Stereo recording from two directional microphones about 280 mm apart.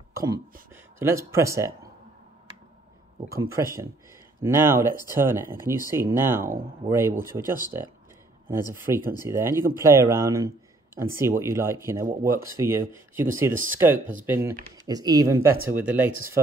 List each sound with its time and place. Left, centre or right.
0.1 s a sound: centre
0.9 s speech: centre
3.3 s speech: centre